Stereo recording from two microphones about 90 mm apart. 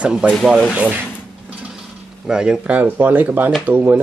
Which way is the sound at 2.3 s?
10° right (ahead or behind).